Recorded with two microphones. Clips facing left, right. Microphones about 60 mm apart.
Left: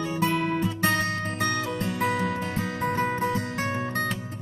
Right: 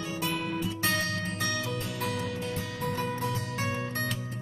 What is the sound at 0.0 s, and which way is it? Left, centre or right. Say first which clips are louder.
Music: left 7 dB; left.